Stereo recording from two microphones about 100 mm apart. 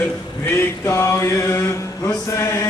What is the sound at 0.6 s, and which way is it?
Mantra, 30° left (ahead or behind).